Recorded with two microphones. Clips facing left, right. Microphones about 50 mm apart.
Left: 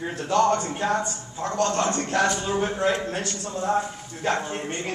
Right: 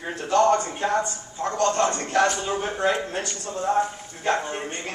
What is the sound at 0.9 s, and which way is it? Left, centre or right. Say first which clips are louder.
A woman's voice: right 2 dB; right.